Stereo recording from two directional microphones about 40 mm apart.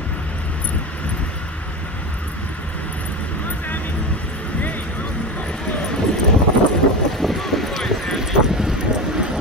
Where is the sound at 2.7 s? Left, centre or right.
Left.